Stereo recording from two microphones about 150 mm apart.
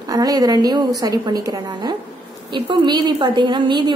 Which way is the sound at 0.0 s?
25° right (ahead or behind).